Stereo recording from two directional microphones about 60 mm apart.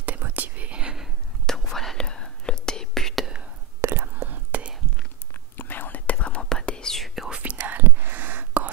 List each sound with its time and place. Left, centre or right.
0.0 s whispering: right
1.4 s whispering: centre
3.8 s whispering: right
5.6 s whispering: left
6.5 s whispering: centre
7.2 s whispering: centre
7.5 s whispering: right